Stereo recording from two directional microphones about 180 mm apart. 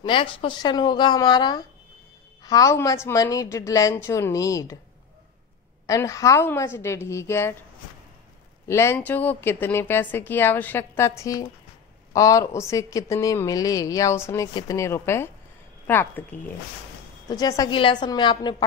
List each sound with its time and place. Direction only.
0.0 s speech: 30° left (ahead or behind)
5.9 s speech: 15° left (ahead or behind)
8.6 s speech: 15° left (ahead or behind)
17.3 s speech: 20° left (ahead or behind)